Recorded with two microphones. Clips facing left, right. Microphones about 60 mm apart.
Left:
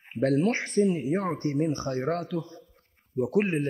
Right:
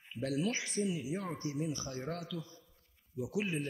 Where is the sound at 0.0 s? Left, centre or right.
Left.